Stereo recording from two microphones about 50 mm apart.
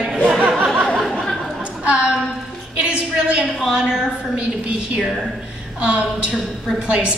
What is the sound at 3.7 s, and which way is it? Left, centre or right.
Speech, centre.